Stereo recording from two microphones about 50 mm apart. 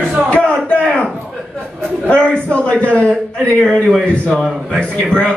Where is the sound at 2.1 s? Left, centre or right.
Left.